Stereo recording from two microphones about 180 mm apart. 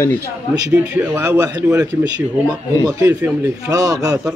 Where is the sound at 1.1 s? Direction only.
10° right (ahead or behind).